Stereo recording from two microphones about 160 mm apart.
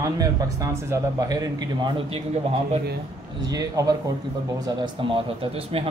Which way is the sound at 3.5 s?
25° right (ahead or behind).